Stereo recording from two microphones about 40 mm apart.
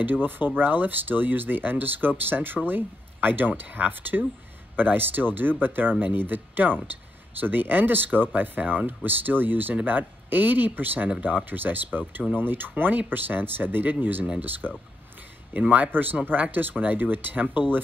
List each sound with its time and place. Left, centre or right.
0.0 s speech: right
11.1 s speech: right
15.5 s speech: right